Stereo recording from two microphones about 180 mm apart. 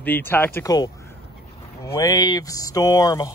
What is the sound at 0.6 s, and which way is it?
Speech, 20° left (ahead or behind).